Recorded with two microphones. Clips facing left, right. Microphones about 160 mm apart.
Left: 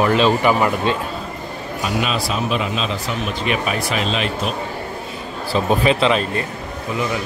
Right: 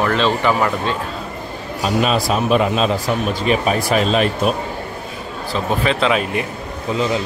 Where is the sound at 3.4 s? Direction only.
35° right (ahead or behind).